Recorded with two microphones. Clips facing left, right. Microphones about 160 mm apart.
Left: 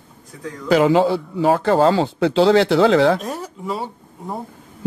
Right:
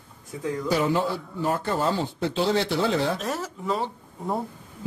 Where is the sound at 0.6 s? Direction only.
90° left.